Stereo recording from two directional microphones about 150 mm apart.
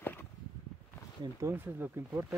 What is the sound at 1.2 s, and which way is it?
Speech, 20° right (ahead or behind).